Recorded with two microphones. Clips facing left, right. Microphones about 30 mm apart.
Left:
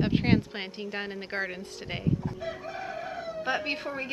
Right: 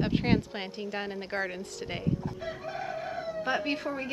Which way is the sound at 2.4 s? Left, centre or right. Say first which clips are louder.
Even; centre.